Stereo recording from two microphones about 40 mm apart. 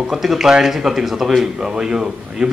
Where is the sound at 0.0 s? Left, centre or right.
Centre.